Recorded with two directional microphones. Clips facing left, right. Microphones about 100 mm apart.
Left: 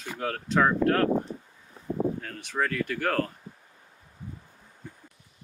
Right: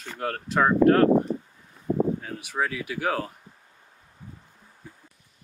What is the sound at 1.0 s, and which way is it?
Speech, 90° right.